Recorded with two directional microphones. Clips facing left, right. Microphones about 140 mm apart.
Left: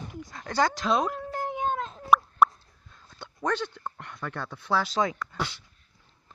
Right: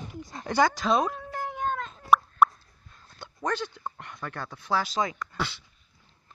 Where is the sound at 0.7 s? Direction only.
5° right (ahead or behind).